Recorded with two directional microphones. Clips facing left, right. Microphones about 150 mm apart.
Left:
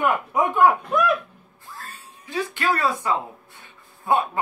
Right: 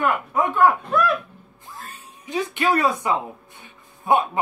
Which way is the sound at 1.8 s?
20° right (ahead or behind).